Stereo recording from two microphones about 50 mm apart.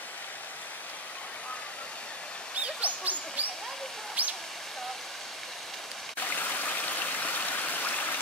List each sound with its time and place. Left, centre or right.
2.8 s a sound: right
4.2 s speech: right
6.1 s stream: left